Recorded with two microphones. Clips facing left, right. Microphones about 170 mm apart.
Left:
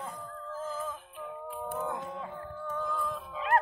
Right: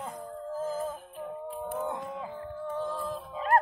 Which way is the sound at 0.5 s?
40° right (ahead or behind).